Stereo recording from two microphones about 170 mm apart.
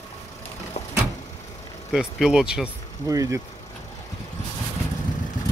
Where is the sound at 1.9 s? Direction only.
5° right (ahead or behind).